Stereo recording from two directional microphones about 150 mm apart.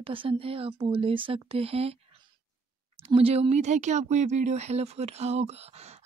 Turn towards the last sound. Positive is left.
turn(degrees=-45)  # may be behind; listen again after turning